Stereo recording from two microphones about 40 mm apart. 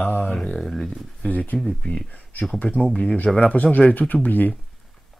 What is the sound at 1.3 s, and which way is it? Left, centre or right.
Speech, left.